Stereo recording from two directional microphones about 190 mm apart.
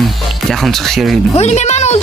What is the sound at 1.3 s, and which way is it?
Speech, 35° left (ahead or behind).